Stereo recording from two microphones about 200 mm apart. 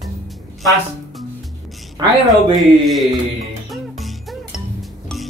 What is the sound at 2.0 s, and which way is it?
Speech, 20° right (ahead or behind).